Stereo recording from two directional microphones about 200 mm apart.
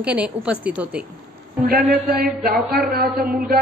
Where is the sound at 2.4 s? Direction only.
50° right (ahead or behind).